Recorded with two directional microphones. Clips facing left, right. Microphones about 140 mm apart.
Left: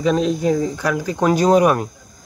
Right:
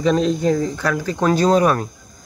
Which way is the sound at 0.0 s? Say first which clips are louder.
Even; 5° left (ahead or behind).